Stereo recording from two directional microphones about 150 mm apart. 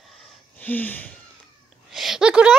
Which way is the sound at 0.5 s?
10° left (ahead or behind).